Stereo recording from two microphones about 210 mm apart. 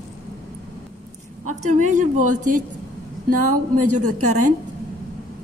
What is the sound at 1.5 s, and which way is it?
Speech, 35° right (ahead or behind).